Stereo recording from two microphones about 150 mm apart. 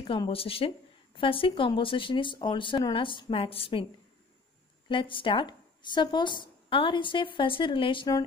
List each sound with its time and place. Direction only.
0.0 s a woman's voice: 35° left (ahead or behind)
4.8 s a woman's voice: 35° left (ahead or behind)